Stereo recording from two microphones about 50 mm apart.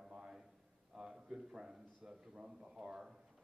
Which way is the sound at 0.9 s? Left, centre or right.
Centre.